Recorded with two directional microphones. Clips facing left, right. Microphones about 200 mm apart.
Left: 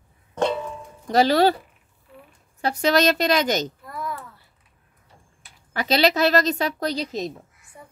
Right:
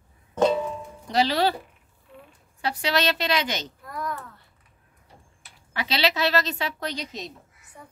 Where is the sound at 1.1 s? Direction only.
45° left (ahead or behind).